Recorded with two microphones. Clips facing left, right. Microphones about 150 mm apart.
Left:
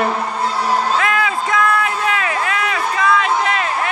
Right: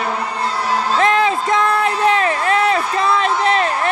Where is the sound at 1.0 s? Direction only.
30° right (ahead or behind).